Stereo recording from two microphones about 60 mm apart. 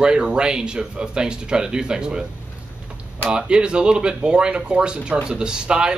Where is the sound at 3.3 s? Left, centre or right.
Centre.